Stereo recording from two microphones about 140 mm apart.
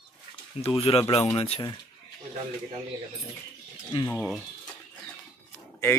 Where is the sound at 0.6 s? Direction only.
45° left (ahead or behind).